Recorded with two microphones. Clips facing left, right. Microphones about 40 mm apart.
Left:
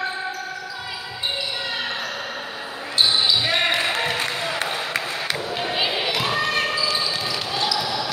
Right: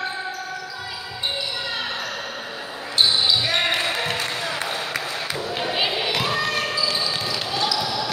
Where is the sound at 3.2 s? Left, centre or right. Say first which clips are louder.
Left 1 dB; centre.